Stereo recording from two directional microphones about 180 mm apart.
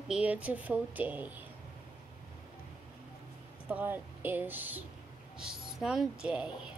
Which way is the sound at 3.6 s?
10° right (ahead or behind).